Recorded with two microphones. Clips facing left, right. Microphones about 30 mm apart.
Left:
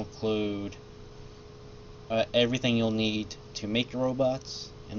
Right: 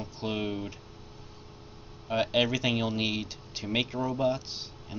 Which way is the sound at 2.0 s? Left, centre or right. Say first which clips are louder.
Left 1 dB; centre.